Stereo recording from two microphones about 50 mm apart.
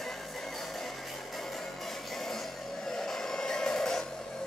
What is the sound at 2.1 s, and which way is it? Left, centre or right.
Music, centre.